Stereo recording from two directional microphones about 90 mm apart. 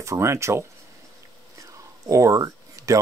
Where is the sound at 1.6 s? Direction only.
35° right (ahead or behind).